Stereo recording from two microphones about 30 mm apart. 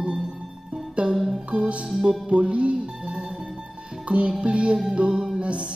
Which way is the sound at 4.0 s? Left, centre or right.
Right.